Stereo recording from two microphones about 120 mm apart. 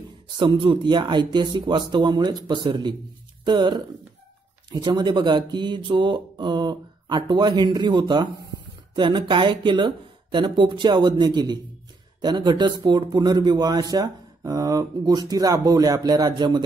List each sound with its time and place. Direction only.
0.4 s speech: 40° right (ahead or behind)